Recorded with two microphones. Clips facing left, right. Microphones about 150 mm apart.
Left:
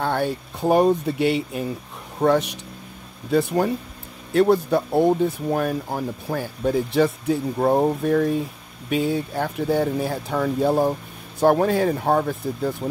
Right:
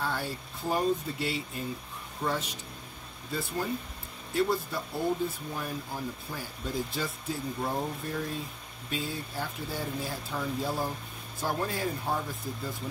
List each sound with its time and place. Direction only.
0.0 s speech: 65° left (ahead or behind)